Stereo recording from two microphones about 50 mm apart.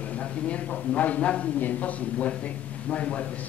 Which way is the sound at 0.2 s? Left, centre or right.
Left.